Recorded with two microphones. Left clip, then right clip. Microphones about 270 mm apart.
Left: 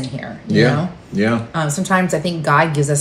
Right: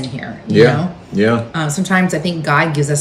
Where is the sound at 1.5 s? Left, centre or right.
Centre.